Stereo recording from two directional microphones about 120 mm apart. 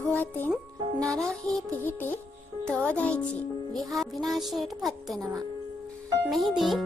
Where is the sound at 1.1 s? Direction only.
5° left (ahead or behind).